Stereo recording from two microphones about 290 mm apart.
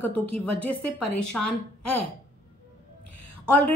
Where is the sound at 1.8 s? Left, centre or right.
Left.